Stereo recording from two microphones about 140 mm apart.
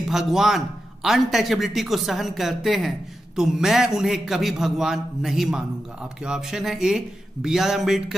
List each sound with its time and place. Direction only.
0.1 s a man's voice: centre (ahead or behind)